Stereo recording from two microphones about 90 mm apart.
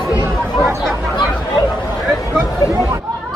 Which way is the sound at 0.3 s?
Centre (ahead or behind).